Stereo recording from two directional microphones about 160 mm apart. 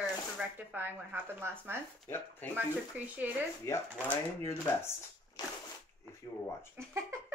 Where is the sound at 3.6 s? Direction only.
15° left (ahead or behind).